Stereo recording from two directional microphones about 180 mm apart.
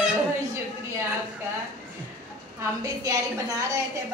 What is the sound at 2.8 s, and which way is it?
Speech, 20° right (ahead or behind).